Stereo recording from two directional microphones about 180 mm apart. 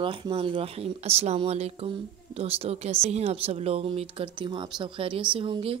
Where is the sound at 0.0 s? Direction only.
30° right (ahead or behind).